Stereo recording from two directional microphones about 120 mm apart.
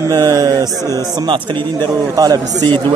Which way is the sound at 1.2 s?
45° right (ahead or behind).